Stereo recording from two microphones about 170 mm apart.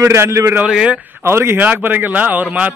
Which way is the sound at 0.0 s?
15° right (ahead or behind).